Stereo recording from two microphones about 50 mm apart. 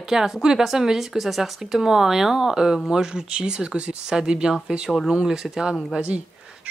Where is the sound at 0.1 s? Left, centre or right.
Centre.